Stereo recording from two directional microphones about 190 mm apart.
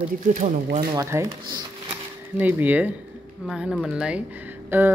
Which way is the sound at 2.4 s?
10° right (ahead or behind).